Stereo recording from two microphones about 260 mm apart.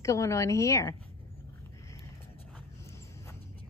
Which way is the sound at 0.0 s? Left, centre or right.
Centre.